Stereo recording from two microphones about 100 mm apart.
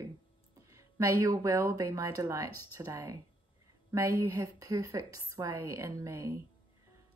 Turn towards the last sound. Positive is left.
turn(degrees=-30)  # may be behind; listen again after turning